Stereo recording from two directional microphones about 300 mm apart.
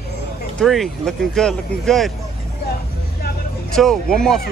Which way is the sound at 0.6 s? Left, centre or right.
Centre.